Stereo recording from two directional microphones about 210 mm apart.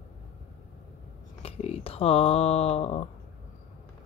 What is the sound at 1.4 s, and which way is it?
Speech, 30° left (ahead or behind).